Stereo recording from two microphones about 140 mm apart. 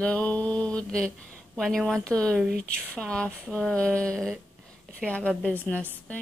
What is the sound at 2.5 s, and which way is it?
Speech, 90° right.